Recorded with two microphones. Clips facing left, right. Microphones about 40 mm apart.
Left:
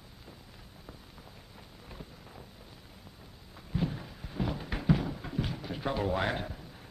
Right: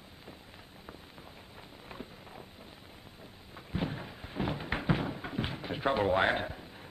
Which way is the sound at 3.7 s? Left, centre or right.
Right.